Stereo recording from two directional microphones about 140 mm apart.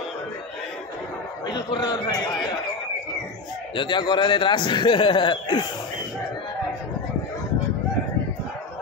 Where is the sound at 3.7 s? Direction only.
35° left (ahead or behind).